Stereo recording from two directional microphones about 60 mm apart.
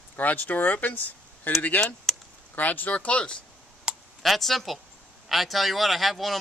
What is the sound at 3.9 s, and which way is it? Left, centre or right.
Computer keyboard, centre.